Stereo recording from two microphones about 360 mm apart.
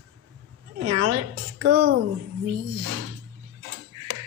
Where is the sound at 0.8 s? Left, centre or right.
Right.